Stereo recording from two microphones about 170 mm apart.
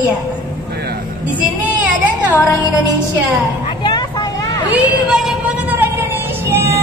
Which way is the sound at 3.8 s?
25° left (ahead or behind).